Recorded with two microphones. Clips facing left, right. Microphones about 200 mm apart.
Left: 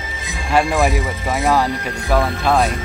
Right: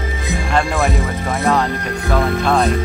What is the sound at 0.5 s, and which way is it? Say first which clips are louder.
Music: left 2 dB; 15° left (ahead or behind).